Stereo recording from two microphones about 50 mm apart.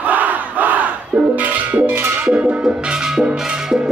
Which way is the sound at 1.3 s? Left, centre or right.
Right.